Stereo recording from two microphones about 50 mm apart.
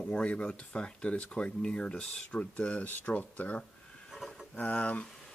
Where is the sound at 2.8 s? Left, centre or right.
Left.